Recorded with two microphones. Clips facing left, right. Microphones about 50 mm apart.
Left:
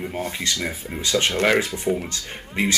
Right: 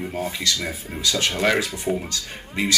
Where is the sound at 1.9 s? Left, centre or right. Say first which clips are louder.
Left 1 dB; centre.